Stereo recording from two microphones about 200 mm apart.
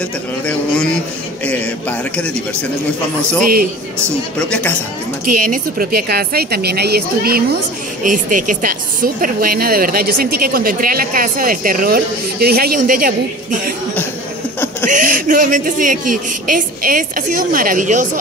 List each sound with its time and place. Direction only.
0.5 s a man's voice: 5° left (ahead or behind)
5.2 s a woman's voice: 45° right (ahead or behind)
14.9 s a woman's voice: 40° right (ahead or behind)